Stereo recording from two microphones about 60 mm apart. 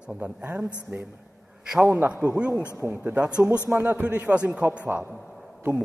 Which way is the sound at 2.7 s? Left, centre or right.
Right.